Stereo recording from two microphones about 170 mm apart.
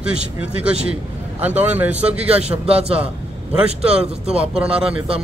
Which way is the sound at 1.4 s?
10° right (ahead or behind).